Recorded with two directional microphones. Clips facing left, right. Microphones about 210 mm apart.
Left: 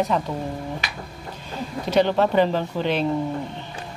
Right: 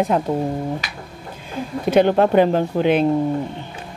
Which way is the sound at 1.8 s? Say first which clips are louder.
Right 4 dB; 50° right (ahead or behind).